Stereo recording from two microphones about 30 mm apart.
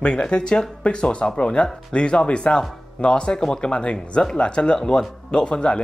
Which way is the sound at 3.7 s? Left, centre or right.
Left.